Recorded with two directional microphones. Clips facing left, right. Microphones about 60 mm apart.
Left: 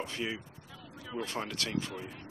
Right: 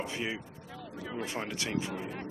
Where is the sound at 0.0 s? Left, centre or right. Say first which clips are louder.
Right 1 dB; centre.